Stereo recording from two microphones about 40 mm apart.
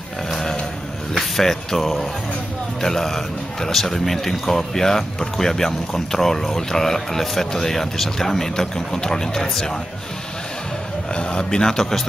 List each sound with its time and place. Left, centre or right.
0.3 s a sound: centre
1.1 s speech: centre
11.1 s speech: left